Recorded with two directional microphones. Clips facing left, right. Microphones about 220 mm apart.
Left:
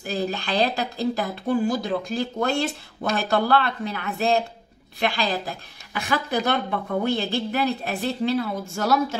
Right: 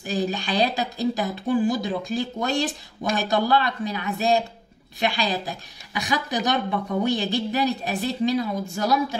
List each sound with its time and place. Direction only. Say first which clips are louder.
0.2 s a woman's voice: even; 15° right (ahead or behind)